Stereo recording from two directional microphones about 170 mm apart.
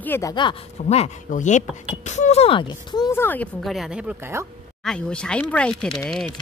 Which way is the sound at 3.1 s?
10° left (ahead or behind).